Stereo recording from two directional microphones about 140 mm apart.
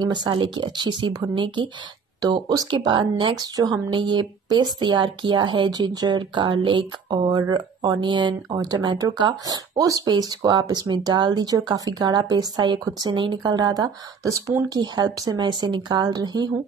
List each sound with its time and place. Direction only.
0.0 s speech: 30° right (ahead or behind)